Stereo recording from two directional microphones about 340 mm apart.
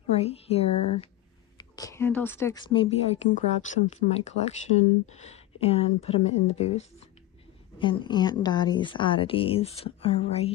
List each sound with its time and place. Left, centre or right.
0.1 s speech: centre